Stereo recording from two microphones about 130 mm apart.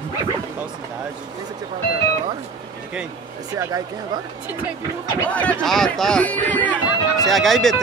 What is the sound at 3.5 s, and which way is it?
Speech, 20° right (ahead or behind).